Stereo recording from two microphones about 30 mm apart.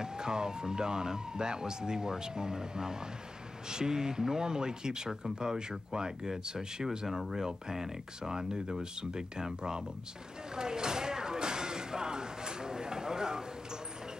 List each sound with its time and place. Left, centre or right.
0.0 s speech: right
7.1 s speech: centre
10.5 s a sound: right